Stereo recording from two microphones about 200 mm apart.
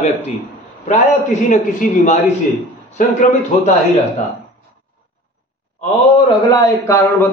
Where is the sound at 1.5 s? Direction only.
40° left (ahead or behind).